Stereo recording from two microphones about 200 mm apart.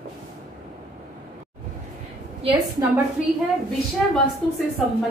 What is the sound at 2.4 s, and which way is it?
Speech, 25° right (ahead or behind).